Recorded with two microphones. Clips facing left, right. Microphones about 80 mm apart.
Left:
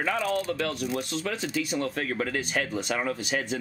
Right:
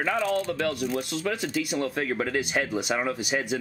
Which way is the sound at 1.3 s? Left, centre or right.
Centre.